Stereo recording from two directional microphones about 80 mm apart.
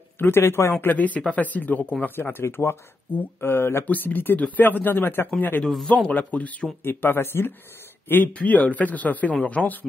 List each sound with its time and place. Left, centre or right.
0.2 s speech: left
0.8 s speech: centre
5.6 s a man's voice: centre
6.0 s speech: centre